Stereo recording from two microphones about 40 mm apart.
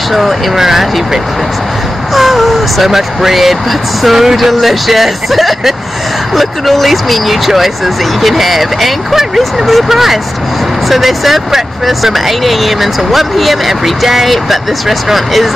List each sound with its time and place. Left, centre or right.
0.1 s speech: centre